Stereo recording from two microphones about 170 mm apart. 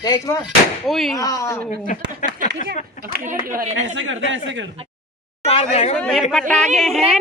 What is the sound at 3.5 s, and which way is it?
Speech, 55° right (ahead or behind).